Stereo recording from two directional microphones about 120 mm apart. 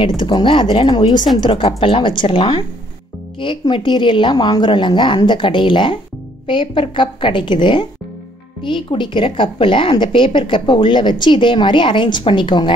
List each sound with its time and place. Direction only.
0.2 s a woman's voice: 40° left (ahead or behind)
1.4 s a woman's voice: 50° left (ahead or behind)